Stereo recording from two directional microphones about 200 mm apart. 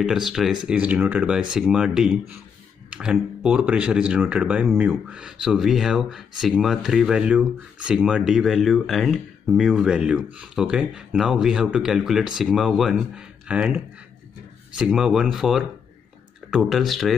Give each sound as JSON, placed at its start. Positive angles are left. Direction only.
{"t": 0.0, "sound": "speech", "side_deg": 0}
{"t": 14.8, "sound": "speech", "side_deg": -5}